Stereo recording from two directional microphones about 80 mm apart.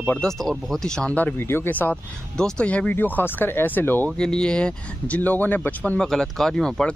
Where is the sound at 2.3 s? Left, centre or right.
Centre.